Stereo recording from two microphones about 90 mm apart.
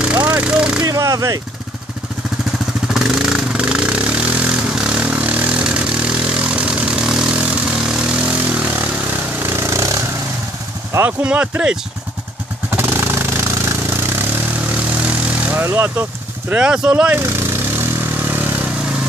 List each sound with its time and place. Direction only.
0.0 s a sound: 15° right (ahead or behind)
0.8 s speech: 40° right (ahead or behind)
2.9 s vehicle: 5° right (ahead or behind)
9.4 s a sound: 30° right (ahead or behind)
11.1 s speech: 15° right (ahead or behind)
12.7 s vehicle: 25° right (ahead or behind)
14.7 s vehicle: 15° right (ahead or behind)
16.5 s speech: 10° right (ahead or behind)
17.7 s vehicle: 20° right (ahead or behind)